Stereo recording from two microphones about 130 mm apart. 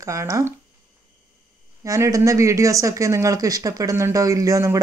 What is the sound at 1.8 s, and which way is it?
Speech, 25° right (ahead or behind).